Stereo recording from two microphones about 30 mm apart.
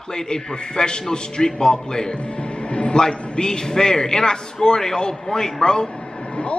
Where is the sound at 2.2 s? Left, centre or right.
Left.